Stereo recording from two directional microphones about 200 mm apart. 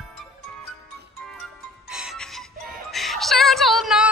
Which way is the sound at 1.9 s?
Centre (ahead or behind).